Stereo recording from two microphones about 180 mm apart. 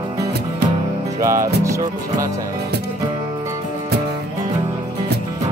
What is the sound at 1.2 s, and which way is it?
Music, 15° right (ahead or behind).